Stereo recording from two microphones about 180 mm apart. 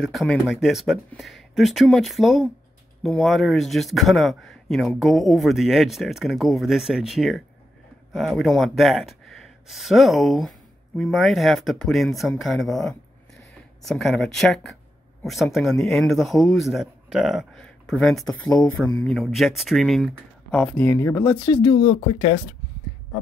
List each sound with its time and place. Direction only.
0.0 s speech: centre (ahead or behind)
20.5 s speech: 10° left (ahead or behind); by 22.4 s 30° left (ahead or behind)